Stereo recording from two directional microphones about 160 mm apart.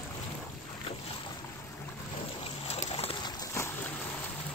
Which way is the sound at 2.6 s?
40° left (ahead or behind).